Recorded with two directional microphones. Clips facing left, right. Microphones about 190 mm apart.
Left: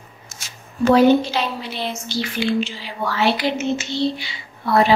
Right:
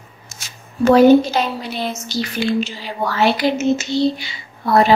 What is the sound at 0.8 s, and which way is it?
A woman's voice, 45° right (ahead or behind).